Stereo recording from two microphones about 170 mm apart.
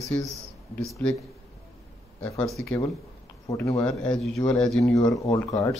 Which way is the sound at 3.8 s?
5° left (ahead or behind).